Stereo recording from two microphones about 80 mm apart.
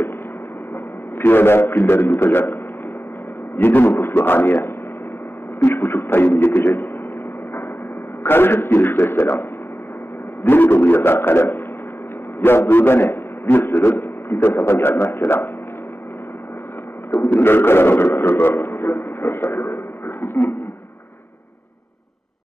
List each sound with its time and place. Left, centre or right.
1.1 s a man's voice: left
8.2 s a man's voice: left
17.4 s a man's voice: left